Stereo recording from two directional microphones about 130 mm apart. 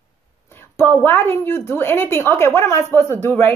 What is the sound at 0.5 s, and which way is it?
Speech, 15° left (ahead or behind).